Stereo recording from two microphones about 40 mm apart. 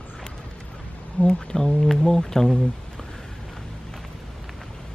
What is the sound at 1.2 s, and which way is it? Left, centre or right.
Speech, left.